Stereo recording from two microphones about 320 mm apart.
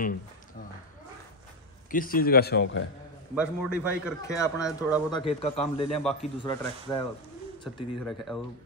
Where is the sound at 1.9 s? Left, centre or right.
Left.